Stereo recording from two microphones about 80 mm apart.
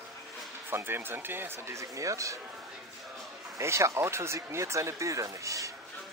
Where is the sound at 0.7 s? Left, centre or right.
Right.